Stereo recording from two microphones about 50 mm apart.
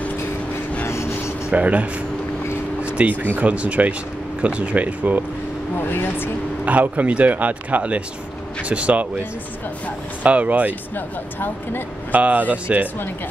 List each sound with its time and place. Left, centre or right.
0.8 s vehicle: left
1.5 s speech: right
2.8 s a sound: right
3.1 s speech: right
5.8 s speech: left
6.6 s speech: right
10.2 s speech: right
11.0 s speech: left
12.1 s speech: right